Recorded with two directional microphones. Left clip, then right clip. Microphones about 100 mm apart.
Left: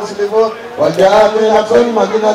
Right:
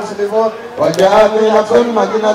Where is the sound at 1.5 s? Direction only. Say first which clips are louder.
Left 1 dB; 10° right (ahead or behind).